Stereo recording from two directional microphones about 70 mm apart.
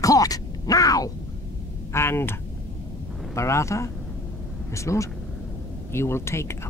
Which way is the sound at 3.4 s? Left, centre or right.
Left.